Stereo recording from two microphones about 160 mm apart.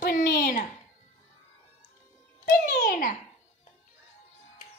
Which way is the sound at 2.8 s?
55° left (ahead or behind).